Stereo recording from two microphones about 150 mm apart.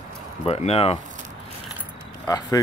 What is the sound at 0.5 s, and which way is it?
Speech, 45° left (ahead or behind).